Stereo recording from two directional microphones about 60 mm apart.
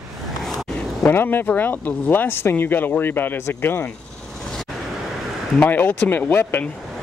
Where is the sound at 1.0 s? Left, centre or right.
Left.